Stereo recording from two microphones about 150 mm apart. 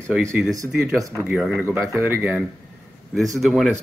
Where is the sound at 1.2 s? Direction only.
5° right (ahead or behind).